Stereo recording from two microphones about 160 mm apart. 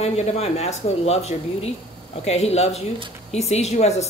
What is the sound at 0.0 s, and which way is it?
A woman's voice, 40° left (ahead or behind).